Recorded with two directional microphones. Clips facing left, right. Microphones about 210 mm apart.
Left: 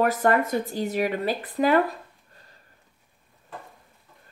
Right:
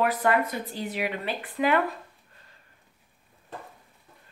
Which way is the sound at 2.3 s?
40° left (ahead or behind).